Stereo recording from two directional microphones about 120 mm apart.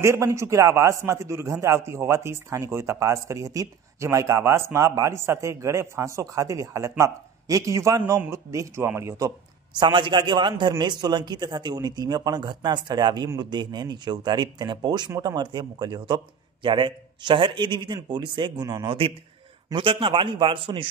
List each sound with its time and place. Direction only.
0.0 s a man's voice: 25° right (ahead or behind)
9.8 s a man's voice: 45° right (ahead or behind)